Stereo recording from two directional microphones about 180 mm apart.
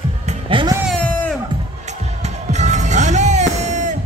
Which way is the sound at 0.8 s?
5° left (ahead or behind).